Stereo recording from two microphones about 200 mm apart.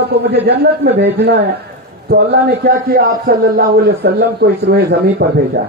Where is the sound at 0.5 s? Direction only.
55° right (ahead or behind).